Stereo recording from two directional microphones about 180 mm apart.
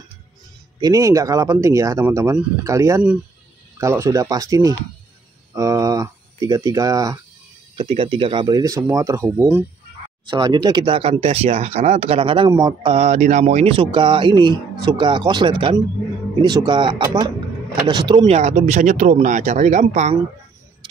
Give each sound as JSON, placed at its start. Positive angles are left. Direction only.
{"t": 0.7, "sound": "speech", "side_deg": -20}
{"t": 7.7, "sound": "speech", "side_deg": -30}
{"t": 10.2, "sound": "speech", "side_deg": -25}
{"t": 12.9, "sound": "speech", "side_deg": -35}
{"t": 18.2, "sound": "speech", "side_deg": -35}